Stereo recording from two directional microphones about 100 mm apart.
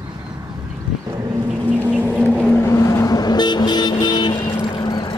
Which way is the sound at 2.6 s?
30° left (ahead or behind).